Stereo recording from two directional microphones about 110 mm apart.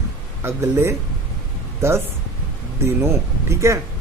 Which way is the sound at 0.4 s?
20° right (ahead or behind).